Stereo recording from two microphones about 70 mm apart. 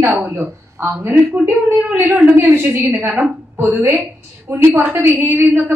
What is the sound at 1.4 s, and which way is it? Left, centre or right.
A woman's voice, right.